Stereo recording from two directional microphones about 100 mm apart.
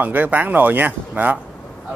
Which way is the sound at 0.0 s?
15° right (ahead or behind).